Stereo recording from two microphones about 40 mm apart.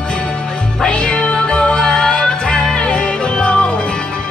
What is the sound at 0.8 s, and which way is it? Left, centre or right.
Music, left.